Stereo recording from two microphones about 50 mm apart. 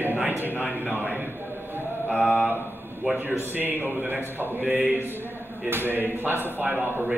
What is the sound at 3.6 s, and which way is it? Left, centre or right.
Speech, right.